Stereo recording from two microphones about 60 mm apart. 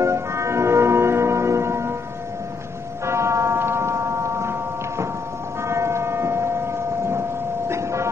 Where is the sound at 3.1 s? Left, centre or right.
Right.